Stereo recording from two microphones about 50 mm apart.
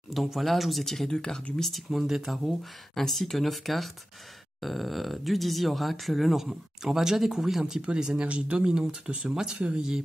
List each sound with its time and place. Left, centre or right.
0.1 s speech: centre
1.6 s speech: centre
2.9 s speech: centre
8.1 s speech: right